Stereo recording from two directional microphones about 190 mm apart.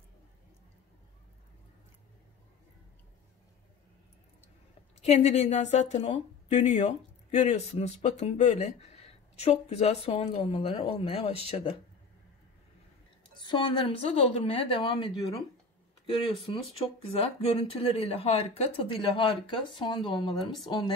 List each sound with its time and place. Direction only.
5.0 s a woman's voice: 35° left (ahead or behind)
13.4 s a woman's voice: 25° left (ahead or behind)
17.1 s a woman's voice: 30° left (ahead or behind)